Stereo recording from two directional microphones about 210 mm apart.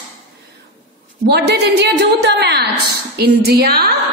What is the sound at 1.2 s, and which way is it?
A woman's voice, 50° right (ahead or behind).